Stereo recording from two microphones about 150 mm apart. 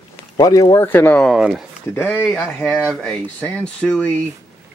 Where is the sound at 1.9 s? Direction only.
15° left (ahead or behind).